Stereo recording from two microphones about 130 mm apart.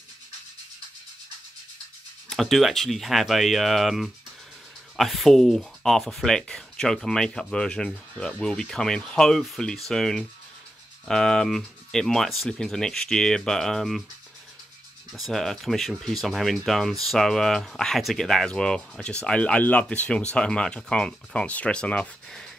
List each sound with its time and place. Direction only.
2.2 s speech: centre (ahead or behind)
15.1 s speech: centre (ahead or behind)